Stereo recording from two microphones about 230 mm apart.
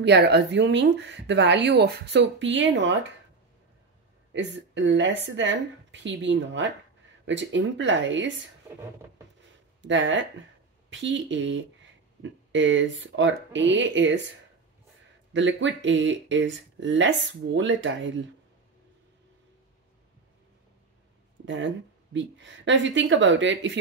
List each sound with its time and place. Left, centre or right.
0.0 s speech: right
4.3 s speech: right
9.8 s speech: right
15.3 s speech: right
21.5 s speech: right